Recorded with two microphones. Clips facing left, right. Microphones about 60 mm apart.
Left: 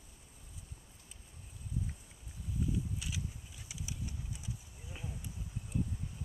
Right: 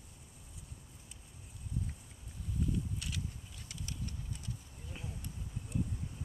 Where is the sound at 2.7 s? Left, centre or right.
Centre.